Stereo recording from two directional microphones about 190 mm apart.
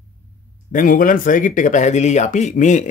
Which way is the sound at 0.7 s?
45° left (ahead or behind).